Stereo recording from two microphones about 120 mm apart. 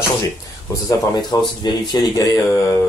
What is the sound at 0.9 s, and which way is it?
Speech, 35° left (ahead or behind).